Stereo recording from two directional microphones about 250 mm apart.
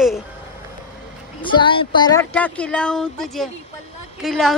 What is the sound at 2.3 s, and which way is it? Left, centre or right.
Speech, centre.